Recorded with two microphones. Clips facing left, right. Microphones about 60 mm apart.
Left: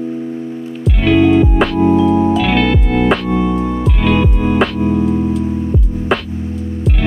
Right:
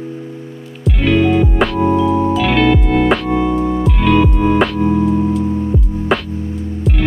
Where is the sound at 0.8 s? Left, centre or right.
Centre.